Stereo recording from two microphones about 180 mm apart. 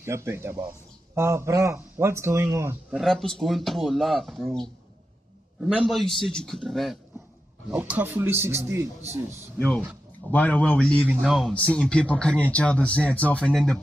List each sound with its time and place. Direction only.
0.0 s speech: 15° right (ahead or behind)
2.9 s speech: centre (ahead or behind)
7.7 s speech: 10° right (ahead or behind)
10.3 s speech: 5° left (ahead or behind)